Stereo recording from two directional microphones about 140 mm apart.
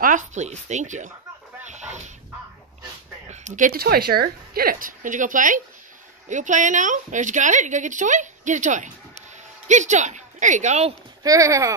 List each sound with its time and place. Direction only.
0.0 s speech: 65° right (ahead or behind)
1.7 s dog: 55° right (ahead or behind)
3.3 s a woman's voice: 60° right (ahead or behind)
11.2 s speech: 25° right (ahead or behind)